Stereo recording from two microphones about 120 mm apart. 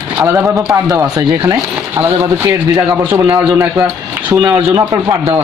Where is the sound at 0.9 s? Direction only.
30° right (ahead or behind).